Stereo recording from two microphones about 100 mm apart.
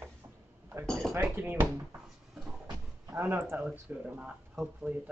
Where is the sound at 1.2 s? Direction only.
15° right (ahead or behind).